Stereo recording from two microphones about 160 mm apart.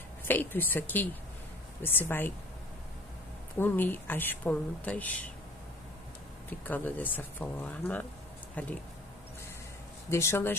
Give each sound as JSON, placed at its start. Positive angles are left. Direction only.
{"t": 0.2, "sound": "speech", "side_deg": 10}
{"t": 3.5, "sound": "speech", "side_deg": 15}
{"t": 6.6, "sound": "speech", "side_deg": 10}
{"t": 10.0, "sound": "speech", "side_deg": 15}